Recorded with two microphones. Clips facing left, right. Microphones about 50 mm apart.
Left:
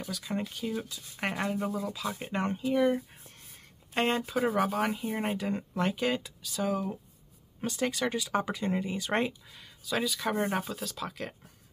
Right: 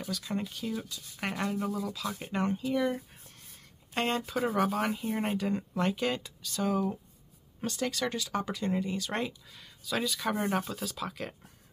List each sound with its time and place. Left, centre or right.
0.0 s speech: centre
7.8 s speech: centre
9.5 s speech: centre